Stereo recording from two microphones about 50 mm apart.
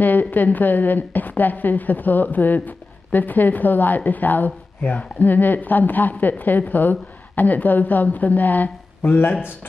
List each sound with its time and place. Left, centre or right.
0.0 s a woman's voice: left